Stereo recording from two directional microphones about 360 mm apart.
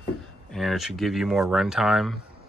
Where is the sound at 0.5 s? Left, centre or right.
Centre.